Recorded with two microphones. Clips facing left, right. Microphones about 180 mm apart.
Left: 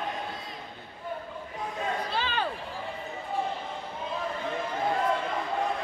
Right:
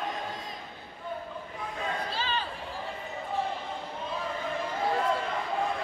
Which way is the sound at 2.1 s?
60° left (ahead or behind).